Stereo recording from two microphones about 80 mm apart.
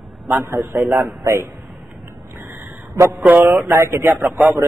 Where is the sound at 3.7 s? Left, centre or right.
Right.